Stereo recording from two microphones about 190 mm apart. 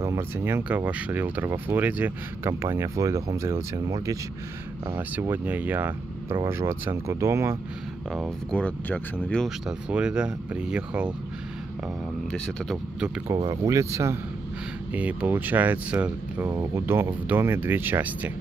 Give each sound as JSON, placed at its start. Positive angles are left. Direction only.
{"t": 0.0, "sound": "speech", "side_deg": -15}
{"t": 8.1, "sound": "speech", "side_deg": 5}
{"t": 12.3, "sound": "speech", "side_deg": 0}
{"t": 13.4, "sound": "speech", "side_deg": -20}